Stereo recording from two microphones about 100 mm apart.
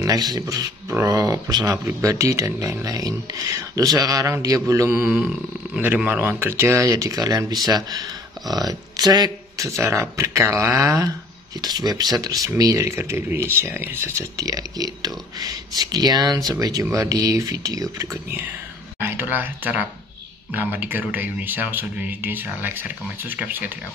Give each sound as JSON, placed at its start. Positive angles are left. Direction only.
{"t": 0.0, "sound": "speech", "side_deg": -40}
{"t": 6.0, "sound": "speech", "side_deg": -20}
{"t": 9.7, "sound": "speech", "side_deg": -30}
{"t": 11.6, "sound": "speech", "side_deg": -40}
{"t": 18.9, "sound": "speech", "side_deg": -20}